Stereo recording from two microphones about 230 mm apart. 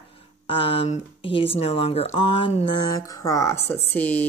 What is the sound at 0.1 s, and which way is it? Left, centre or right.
Speech, left.